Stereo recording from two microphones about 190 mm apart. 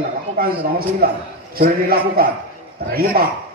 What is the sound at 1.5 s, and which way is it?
A man's voice, 50° right (ahead or behind).